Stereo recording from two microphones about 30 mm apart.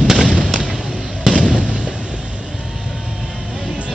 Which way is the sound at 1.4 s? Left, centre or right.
Left.